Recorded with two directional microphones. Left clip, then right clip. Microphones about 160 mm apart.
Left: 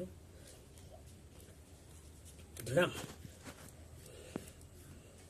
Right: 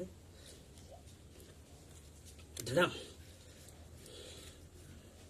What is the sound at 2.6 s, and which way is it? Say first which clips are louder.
Speech: right 1 dB; 15° right (ahead or behind).